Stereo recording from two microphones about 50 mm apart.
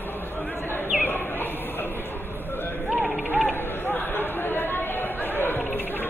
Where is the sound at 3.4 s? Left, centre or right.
Left.